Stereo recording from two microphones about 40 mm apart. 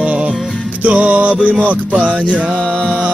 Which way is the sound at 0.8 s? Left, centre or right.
Right.